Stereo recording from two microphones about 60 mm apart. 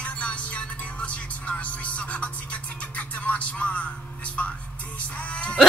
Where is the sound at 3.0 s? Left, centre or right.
Left.